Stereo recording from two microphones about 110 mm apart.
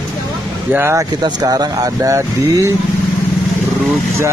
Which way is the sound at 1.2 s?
35° right (ahead or behind).